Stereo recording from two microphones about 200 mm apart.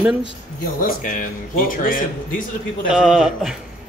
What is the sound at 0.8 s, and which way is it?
Speech, 45° left (ahead or behind).